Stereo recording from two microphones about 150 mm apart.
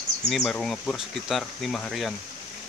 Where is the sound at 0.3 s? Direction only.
Centre (ahead or behind).